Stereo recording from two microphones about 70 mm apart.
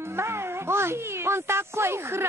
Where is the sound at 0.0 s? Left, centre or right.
Right.